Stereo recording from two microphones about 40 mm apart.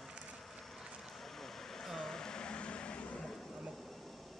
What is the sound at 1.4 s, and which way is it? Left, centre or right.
Vehicle, centre.